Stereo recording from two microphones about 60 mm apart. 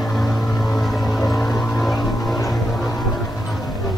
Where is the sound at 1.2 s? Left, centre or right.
Centre.